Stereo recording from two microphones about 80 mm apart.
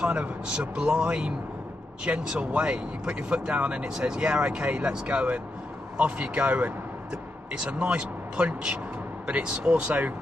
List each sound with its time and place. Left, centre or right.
0.0 s speech: centre